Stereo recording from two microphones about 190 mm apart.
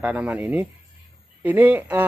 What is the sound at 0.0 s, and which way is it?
Speech, 5° right (ahead or behind).